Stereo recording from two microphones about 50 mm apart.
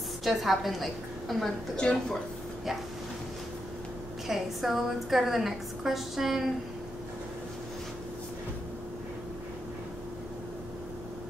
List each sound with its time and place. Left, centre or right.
0.2 s a woman's voice: centre
1.8 s speech: centre
4.3 s a woman's voice: centre